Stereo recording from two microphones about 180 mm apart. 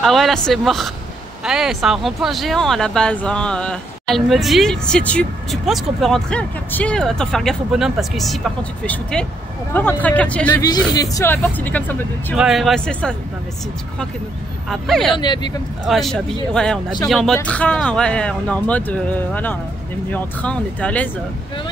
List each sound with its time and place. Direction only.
0.0 s speech: centre (ahead or behind)
10.7 s speech: 20° left (ahead or behind)
12.4 s speech: centre (ahead or behind)
14.7 s speech: centre (ahead or behind)
15.1 s speech: 25° left (ahead or behind)
15.9 s speech: centre (ahead or behind)